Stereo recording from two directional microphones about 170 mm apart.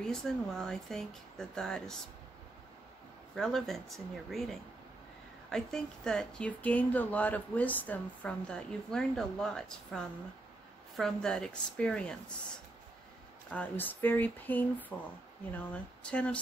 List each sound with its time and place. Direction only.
0.0 s speech: 5° left (ahead or behind)
3.3 s speech: centre (ahead or behind)
13.5 s speech: 10° left (ahead or behind)